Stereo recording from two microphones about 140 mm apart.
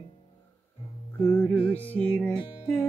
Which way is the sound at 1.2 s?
15° left (ahead or behind).